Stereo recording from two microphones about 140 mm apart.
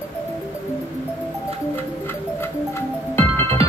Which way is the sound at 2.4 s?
15° left (ahead or behind).